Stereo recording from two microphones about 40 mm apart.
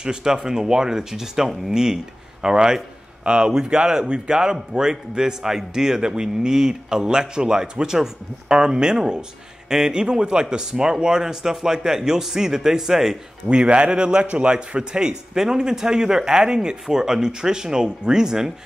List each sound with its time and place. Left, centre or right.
0.0 s a man's voice: centre
13.5 s a man's voice: right